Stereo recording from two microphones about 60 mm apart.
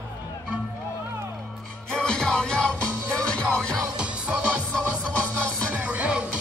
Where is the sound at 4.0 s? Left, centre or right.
Centre.